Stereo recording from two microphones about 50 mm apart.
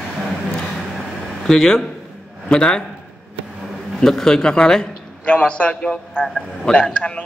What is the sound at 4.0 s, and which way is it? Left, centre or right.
A man's voice, centre.